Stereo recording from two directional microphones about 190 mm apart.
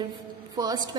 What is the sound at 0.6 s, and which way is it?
Speech, 20° right (ahead or behind).